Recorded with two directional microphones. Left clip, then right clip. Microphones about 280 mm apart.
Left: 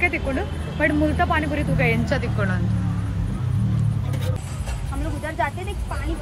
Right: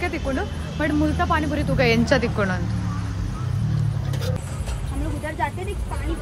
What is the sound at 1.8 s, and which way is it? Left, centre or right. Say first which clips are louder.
Speech: right 5 dB; right.